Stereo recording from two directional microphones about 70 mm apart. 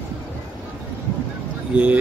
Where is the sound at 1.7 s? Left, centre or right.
Centre.